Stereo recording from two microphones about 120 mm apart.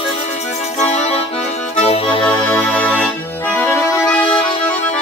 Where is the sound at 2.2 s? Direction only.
10° left (ahead or behind).